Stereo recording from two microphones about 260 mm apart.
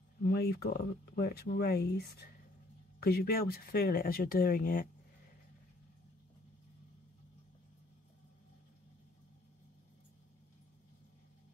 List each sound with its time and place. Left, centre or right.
0.2 s speech: left